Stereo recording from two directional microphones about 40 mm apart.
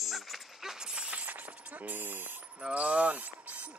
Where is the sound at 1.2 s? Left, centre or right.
Right.